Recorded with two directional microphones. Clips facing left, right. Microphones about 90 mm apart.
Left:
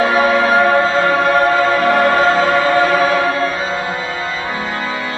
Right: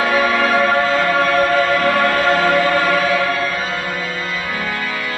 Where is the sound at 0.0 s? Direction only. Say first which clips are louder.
Left 3 dB; 25° left (ahead or behind).